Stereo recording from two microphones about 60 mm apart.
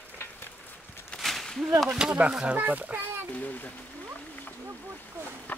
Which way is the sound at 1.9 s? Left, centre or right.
Centre.